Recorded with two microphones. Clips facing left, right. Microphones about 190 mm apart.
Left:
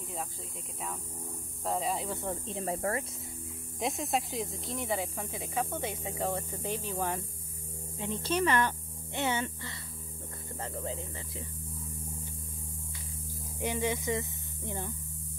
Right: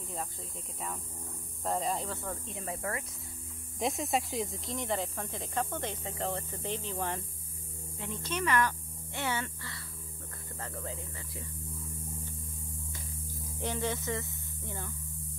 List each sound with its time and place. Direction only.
1.6 s speech: centre (ahead or behind)
2.0 s speech: 20° left (ahead or behind)
2.4 s speech: 35° left (ahead or behind)
3.8 s speech: centre (ahead or behind)
8.0 s speech: 25° left (ahead or behind)
13.6 s hum: 10° left (ahead or behind)